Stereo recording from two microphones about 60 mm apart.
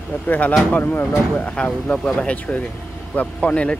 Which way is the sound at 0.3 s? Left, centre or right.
Left.